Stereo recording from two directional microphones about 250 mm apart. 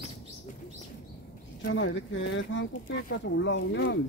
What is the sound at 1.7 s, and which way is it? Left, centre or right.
Speech, left.